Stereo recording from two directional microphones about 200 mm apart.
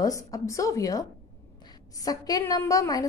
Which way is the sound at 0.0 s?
15° left (ahead or behind).